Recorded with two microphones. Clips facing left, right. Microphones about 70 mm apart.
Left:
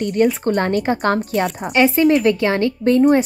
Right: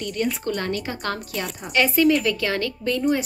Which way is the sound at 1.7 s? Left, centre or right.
Left.